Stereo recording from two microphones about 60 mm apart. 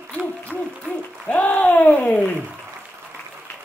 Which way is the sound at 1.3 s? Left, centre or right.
Left.